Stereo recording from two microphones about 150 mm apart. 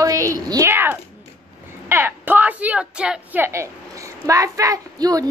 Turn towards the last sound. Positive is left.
turn(degrees=-25)  # may be behind; listen again after turning